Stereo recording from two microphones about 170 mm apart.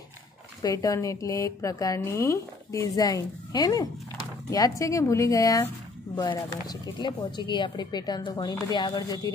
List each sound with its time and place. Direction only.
0.6 s a woman's voice: 20° left (ahead or behind)